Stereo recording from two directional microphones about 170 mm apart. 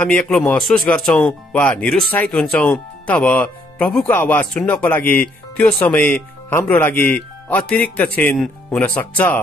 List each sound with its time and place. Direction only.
0.0 s speech: 5° left (ahead or behind)